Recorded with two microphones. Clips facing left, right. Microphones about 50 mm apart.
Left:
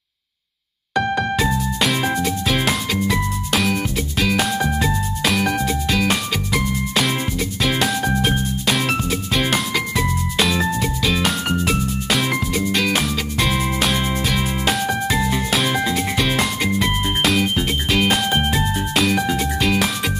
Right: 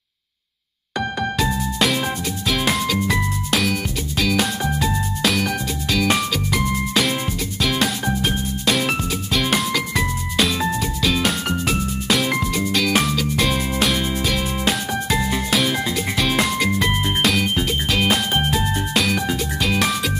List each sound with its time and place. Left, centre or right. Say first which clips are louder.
2.0 s music: left 4 dB; centre
3.1 s music: even; centre
5.4 s music: left 3 dB; centre
6.5 s music: even; centre
10.8 s music: left 1 dB; centre
11.2 s music: left 1 dB; centre